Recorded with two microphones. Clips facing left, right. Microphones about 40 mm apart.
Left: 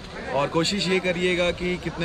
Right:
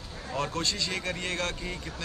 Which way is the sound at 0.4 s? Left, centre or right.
Left.